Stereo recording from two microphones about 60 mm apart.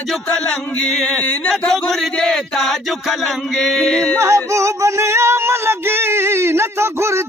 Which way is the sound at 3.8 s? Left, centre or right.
Centre.